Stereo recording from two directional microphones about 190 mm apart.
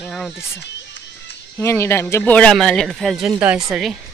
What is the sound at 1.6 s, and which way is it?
Speech, 15° left (ahead or behind).